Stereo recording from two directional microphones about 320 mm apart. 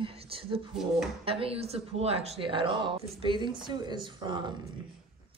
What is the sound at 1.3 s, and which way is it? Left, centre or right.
Speech, centre.